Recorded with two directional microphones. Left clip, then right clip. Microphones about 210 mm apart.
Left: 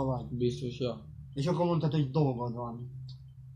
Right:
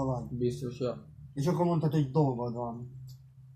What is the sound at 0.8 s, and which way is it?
Speech, 20° left (ahead or behind).